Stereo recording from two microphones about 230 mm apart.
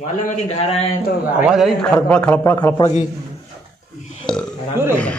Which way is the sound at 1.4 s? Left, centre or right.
Centre.